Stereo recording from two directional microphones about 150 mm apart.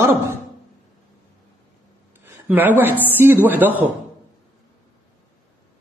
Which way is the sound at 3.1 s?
15° right (ahead or behind).